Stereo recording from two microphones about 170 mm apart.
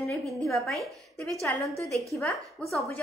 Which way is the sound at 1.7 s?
20° right (ahead or behind).